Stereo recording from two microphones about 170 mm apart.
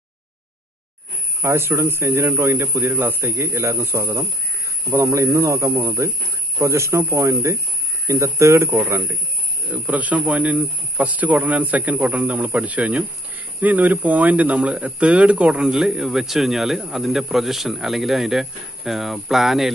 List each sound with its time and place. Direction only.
1.4 s speech: 15° right (ahead or behind)